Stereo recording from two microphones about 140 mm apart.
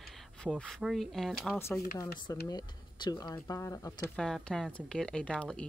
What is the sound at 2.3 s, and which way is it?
Speech, 30° left (ahead or behind).